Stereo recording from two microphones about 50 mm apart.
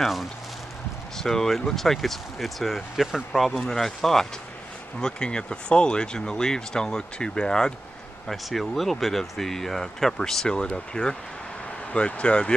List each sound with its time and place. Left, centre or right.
0.0 s speech: centre
1.1 s speech: centre
5.0 s speech: centre
8.3 s speech: centre; by 12.5 s left